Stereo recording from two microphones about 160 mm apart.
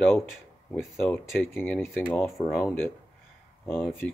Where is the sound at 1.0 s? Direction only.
10° left (ahead or behind).